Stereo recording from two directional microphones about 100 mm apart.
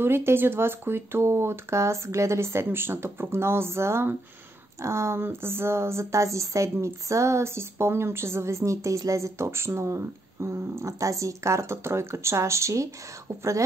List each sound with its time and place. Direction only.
0.0 s a woman's voice: 25° right (ahead or behind)